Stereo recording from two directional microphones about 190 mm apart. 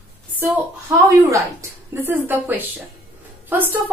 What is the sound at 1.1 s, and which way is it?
A woman's voice, 15° right (ahead or behind).